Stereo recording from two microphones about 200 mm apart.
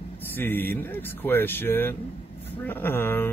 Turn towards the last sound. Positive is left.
turn(degrees=10)  # may be behind; listen again after turning